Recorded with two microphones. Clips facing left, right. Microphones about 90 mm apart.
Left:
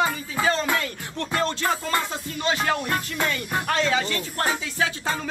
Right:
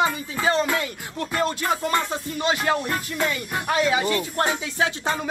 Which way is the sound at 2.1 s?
20° right (ahead or behind).